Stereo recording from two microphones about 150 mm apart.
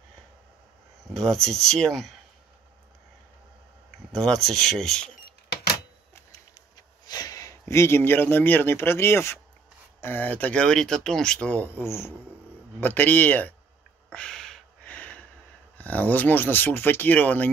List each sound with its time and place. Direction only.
1.1 s speech: 5° left (ahead or behind)
4.1 s speech: centre (ahead or behind)
7.1 s speech: 25° left (ahead or behind)
14.1 s a sound: 5° left (ahead or behind)
15.8 s speech: 10° left (ahead or behind)